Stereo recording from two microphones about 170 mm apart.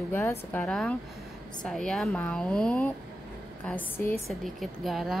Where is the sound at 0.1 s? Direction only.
15° left (ahead or behind).